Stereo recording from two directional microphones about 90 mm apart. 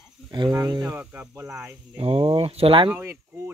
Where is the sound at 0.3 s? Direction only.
50° right (ahead or behind).